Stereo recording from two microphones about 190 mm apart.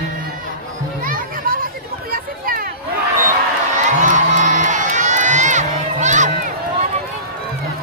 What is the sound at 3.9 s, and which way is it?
Crowd, 40° right (ahead or behind).